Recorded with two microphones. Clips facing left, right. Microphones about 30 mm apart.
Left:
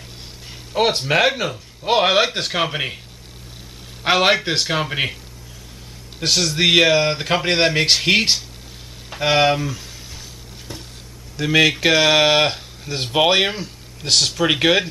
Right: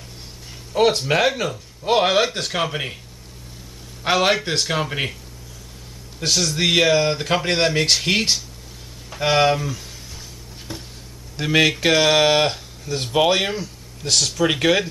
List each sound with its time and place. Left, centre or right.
0.7 s speech: centre
4.0 s speech: centre
6.2 s speech: centre
10.7 s a sound: centre
11.3 s speech: centre
11.7 s speech: centre